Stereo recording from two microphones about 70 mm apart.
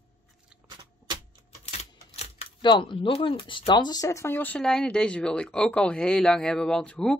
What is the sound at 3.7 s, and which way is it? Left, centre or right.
Speech, left.